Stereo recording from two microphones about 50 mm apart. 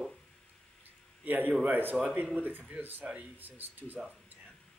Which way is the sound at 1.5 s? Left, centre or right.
Right.